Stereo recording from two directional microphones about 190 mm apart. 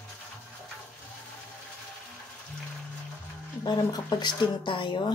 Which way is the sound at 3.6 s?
20° left (ahead or behind).